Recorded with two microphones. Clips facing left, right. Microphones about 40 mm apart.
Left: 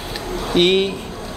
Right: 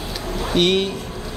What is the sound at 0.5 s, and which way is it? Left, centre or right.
Speech, centre.